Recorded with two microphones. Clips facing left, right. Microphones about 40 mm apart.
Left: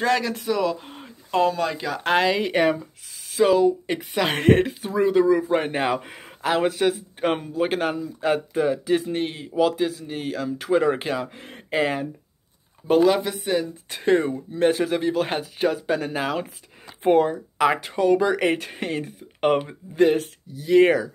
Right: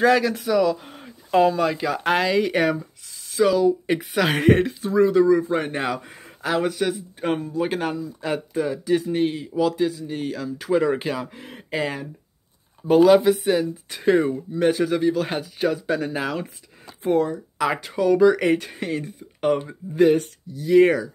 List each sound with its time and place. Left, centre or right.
0.0 s speech: centre
1.3 s speech: centre
3.3 s speech: centre
3.8 s speech: centre
5.0 s speech: left
5.5 s speech: centre
5.9 s speech: left
6.2 s speech: centre
11.7 s speech: centre
12.8 s speech: centre
17.0 s speech: left
17.7 s speech: centre
19.4 s speech: left
20.0 s speech: centre